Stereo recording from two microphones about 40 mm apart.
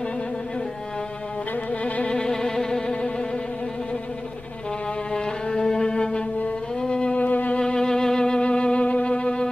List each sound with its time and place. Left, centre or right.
1.7 s music: left
2.1 s music: centre
5.1 s music: centre
7.2 s music: left
7.5 s violin: left